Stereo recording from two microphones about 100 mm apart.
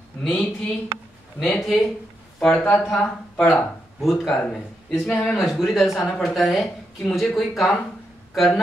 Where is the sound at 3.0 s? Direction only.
10° left (ahead or behind).